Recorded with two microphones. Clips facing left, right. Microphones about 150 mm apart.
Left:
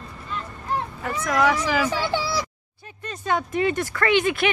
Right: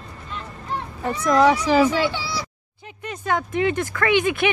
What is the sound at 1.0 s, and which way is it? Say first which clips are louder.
Speech: right 6 dB; 30° right (ahead or behind).